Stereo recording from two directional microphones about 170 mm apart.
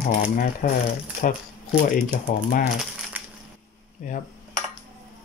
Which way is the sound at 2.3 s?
55° left (ahead or behind).